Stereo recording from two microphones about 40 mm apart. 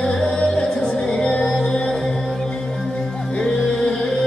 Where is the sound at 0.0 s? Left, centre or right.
Centre.